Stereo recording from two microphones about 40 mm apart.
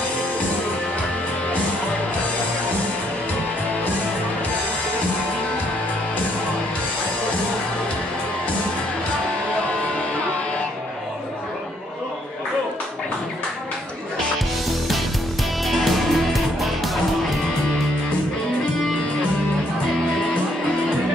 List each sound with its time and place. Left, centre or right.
15.6 s music: centre